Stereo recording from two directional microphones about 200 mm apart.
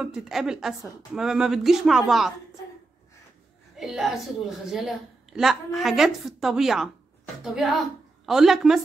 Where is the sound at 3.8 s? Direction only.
Centre (ahead or behind).